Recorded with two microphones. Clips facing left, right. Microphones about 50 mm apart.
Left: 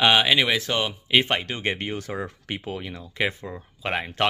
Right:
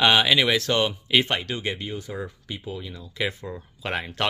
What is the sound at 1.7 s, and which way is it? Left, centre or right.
Speech, left.